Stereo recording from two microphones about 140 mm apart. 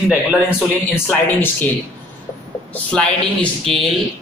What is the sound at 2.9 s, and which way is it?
Speech, 5° left (ahead or behind).